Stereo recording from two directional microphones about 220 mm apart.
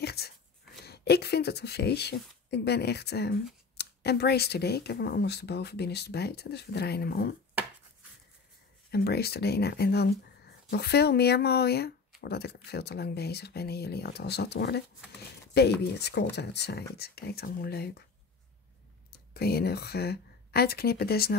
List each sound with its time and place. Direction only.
0.0 s a sound: 45° left (ahead or behind)
0.8 s speech: 50° left (ahead or behind)
8.9 s speech: 45° left (ahead or behind)
15.8 s speech: 50° left (ahead or behind)
19.3 s speech: 45° left (ahead or behind)